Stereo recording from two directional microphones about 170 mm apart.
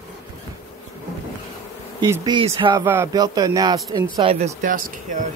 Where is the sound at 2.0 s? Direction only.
25° right (ahead or behind).